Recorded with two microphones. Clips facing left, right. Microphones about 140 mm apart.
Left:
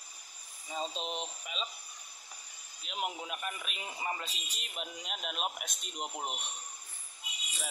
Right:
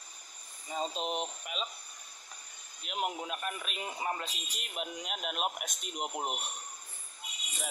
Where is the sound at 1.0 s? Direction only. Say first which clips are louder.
Right 4 dB; 50° right (ahead or behind).